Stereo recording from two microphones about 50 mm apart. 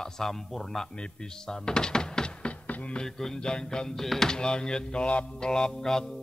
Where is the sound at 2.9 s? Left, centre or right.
Centre.